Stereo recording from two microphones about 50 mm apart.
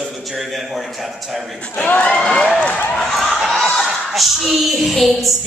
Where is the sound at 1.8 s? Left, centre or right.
Left.